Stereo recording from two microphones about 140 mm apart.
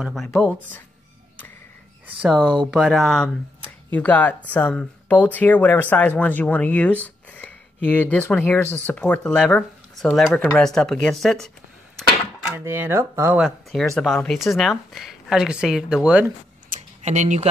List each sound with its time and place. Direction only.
0.0 s speech: centre (ahead or behind)
2.2 s speech: 5° left (ahead or behind)
12.4 s speech: 15° right (ahead or behind)
13.4 s speech: centre (ahead or behind)
16.6 s tick-tock: 60° right (ahead or behind)